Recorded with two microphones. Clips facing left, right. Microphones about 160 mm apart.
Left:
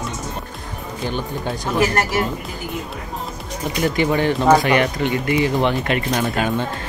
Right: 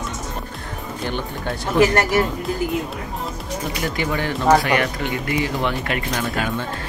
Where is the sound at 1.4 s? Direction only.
20° left (ahead or behind).